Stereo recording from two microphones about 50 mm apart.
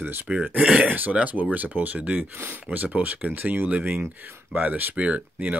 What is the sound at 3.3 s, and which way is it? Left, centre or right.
Speech, right.